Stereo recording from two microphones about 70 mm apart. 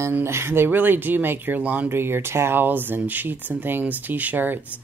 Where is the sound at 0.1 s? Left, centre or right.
Right.